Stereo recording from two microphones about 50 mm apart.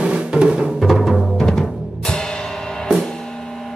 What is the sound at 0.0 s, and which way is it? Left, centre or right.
Music, right.